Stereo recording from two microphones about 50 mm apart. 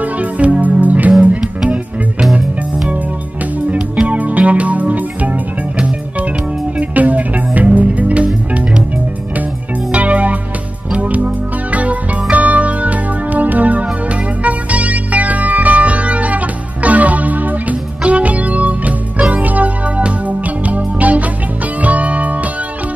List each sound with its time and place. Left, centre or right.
0.0 s music: right
3.7 s music: right
6.8 s music: right
9.9 s music: right